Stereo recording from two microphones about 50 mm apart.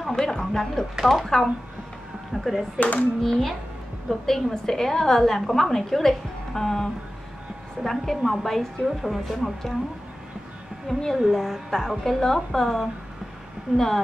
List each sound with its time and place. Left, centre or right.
0.0 s a woman's voice: centre
2.8 s a child's voice: left
3.2 s a woman's voice: centre
10.9 s a woman's voice: centre